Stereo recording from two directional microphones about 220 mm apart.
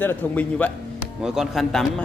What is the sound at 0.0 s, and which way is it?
A man's voice, 10° left (ahead or behind).